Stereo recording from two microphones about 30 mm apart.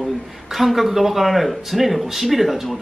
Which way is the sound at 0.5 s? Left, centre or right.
Centre.